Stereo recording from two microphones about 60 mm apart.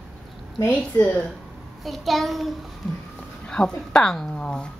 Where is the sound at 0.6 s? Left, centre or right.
Left.